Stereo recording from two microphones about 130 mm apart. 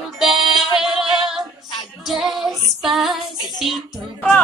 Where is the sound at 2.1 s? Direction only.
Centre (ahead or behind).